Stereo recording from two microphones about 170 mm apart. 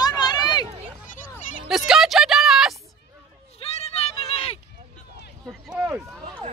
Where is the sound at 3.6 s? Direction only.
35° left (ahead or behind).